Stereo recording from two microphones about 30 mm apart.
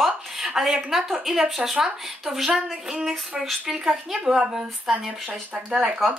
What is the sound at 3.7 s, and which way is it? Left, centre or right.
Speech, centre.